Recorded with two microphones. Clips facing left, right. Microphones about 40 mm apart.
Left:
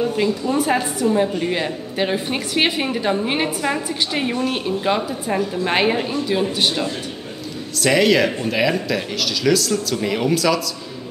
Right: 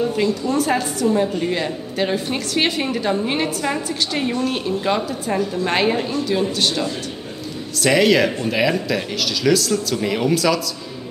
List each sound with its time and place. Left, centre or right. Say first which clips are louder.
0.0 s a woman's voice: even; centre
7.7 s speech: even; centre